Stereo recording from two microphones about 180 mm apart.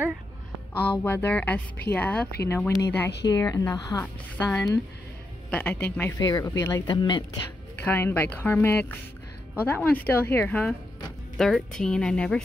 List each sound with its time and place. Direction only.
1.0 s a woman's voice: 10° left (ahead or behind)
6.9 s speech: 25° left (ahead or behind)
7.8 s a woman's voice: 10° left (ahead or behind)